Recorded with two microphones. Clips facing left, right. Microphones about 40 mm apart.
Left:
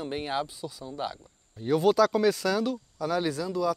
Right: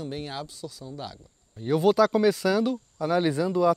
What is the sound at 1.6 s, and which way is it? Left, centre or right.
Speech, centre.